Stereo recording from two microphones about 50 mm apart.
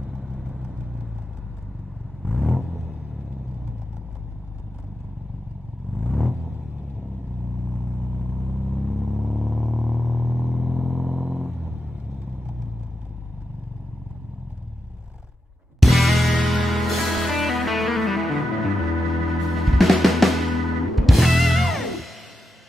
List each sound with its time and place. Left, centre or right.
0.0 s vehicle: centre
2.2 s vehicle: centre
2.5 s vehicle: centre
6.0 s vehicle: centre
7.7 s vehicle: centre
8.0 s vehicle: right; by 10.3 s centre
10.3 s vehicle: centre
15.8 s music: centre